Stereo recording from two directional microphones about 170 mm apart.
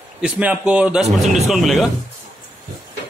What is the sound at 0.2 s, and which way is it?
A man's voice, 10° right (ahead or behind).